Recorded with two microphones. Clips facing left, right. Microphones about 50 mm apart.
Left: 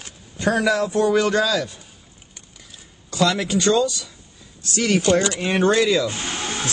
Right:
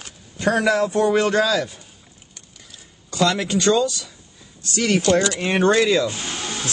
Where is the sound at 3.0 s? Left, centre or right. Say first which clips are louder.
Even; centre.